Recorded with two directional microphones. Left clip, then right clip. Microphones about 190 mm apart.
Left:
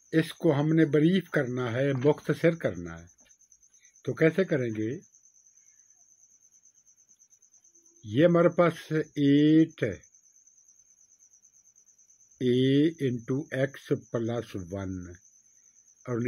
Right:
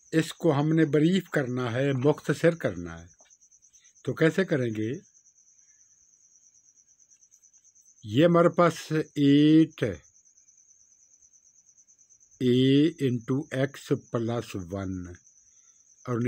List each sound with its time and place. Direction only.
0.1 s speech: 40° right (ahead or behind)
8.0 s speech: 50° right (ahead or behind)
12.4 s speech: 45° right (ahead or behind)